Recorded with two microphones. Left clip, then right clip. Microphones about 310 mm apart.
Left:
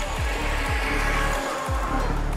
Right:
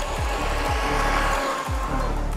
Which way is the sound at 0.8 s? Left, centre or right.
Centre.